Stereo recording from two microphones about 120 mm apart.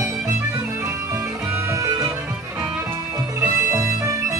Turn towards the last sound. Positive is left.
turn(degrees=-25)  # may be behind; listen again after turning